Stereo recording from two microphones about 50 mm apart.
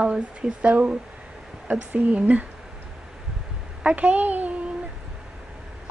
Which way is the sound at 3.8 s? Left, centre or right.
Right.